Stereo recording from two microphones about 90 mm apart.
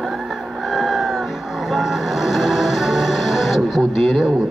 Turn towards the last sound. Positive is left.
turn(degrees=-5)  # may be behind; listen again after turning